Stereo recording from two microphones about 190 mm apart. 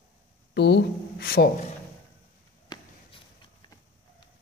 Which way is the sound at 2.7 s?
20° left (ahead or behind).